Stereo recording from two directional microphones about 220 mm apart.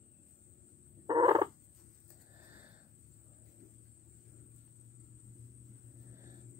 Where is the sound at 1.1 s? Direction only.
20° right (ahead or behind).